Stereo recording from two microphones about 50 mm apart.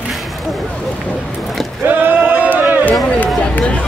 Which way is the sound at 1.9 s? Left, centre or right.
Right.